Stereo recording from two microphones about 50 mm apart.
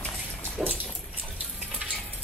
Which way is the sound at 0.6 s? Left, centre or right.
Centre.